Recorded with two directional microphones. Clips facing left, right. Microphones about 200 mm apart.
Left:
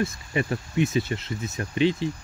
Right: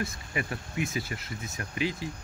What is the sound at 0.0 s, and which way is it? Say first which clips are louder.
Speech: left 7 dB; 25° left (ahead or behind).